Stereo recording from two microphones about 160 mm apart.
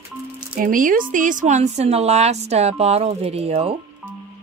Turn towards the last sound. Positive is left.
turn(degrees=-40)  # may be behind; listen again after turning